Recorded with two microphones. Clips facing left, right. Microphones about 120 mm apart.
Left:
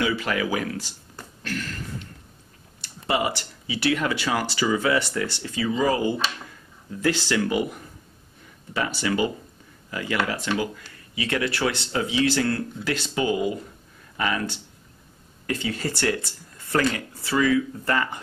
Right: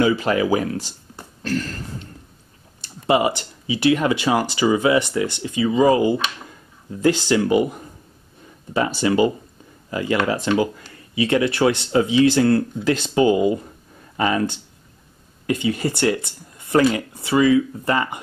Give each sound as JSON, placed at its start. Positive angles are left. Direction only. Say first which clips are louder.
{"t": 0.0, "sound": "speech", "louder": "right 7 dB", "side_deg": -30}
{"t": 3.1, "sound": "speech", "louder": "right 7 dB", "side_deg": -20}
{"t": 9.0, "sound": "speech", "louder": "right 7 dB", "side_deg": -30}